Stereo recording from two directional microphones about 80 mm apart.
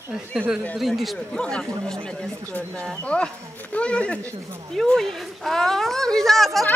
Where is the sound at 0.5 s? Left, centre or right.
Centre.